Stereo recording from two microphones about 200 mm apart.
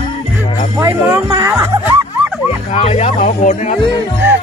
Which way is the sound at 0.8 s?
15° right (ahead or behind).